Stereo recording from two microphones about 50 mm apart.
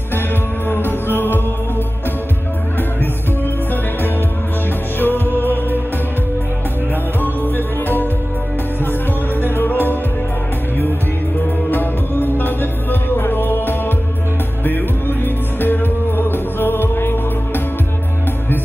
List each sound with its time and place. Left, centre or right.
0.7 s music: left
4.9 s music: left
7.2 s music: left
9.6 s music: left
11.7 s music: left